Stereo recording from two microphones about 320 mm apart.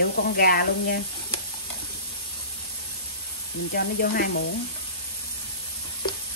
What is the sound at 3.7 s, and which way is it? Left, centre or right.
Speech, left.